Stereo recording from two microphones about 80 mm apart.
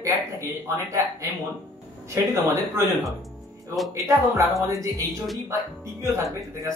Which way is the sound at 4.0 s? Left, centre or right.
Right.